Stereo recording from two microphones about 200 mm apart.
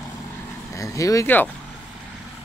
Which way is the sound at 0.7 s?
15° left (ahead or behind).